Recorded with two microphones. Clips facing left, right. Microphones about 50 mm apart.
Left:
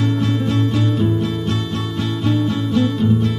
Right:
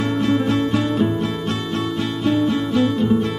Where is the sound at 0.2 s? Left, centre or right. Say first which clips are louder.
Right 1 dB; centre.